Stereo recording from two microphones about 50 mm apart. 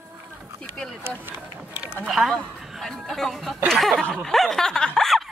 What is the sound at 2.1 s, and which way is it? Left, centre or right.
Speech, centre.